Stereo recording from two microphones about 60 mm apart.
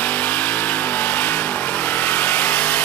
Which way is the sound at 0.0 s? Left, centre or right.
Left.